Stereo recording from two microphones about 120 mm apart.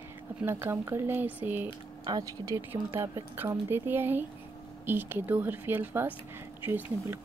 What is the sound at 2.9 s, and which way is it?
Speech, 20° right (ahead or behind).